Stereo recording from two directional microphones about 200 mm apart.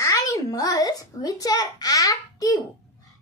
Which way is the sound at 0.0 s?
15° left (ahead or behind).